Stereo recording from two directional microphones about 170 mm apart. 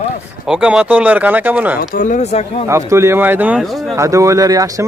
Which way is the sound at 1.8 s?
50° left (ahead or behind).